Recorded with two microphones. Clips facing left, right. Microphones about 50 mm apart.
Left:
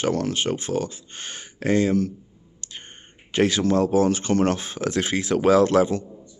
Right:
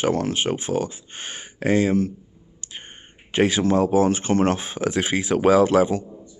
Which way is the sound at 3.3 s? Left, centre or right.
Centre.